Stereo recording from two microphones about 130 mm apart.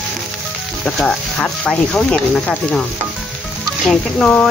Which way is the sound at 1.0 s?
5° left (ahead or behind).